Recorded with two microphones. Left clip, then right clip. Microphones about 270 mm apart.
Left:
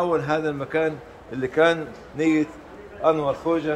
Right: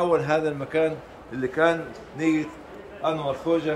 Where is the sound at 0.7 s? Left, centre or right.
Centre.